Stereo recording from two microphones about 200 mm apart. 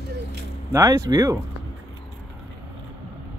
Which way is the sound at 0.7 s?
20° right (ahead or behind).